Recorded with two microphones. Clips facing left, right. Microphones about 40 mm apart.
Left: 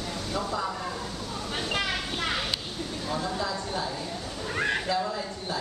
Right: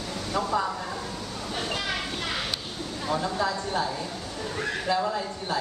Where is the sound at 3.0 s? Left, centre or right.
Centre.